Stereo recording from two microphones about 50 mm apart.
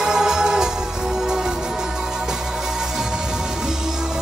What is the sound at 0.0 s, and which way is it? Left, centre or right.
Music, centre.